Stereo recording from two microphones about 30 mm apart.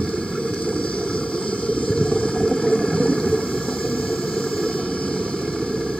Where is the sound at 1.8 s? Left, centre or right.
Left.